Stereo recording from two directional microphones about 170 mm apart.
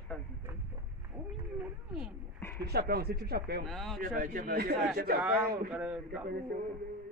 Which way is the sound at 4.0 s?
55° right (ahead or behind).